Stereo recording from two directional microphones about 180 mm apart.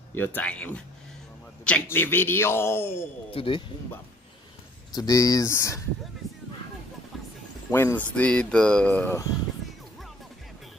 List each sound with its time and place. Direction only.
0.1 s a man's voice: 10° left (ahead or behind)
3.3 s speech: 30° left (ahead or behind)
4.9 s a man's voice: 20° left (ahead or behind)
7.7 s a man's voice: 10° left (ahead or behind)